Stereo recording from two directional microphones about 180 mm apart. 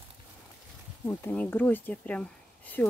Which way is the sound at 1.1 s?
10° left (ahead or behind).